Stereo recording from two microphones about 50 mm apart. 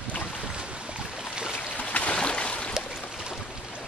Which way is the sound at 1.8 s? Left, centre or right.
Left.